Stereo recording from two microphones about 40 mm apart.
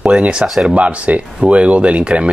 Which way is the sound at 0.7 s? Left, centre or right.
Right.